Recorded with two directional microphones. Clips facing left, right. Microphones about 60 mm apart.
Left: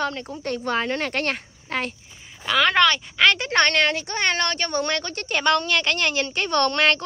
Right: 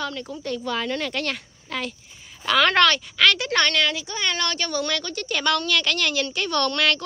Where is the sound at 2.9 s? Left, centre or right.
Left.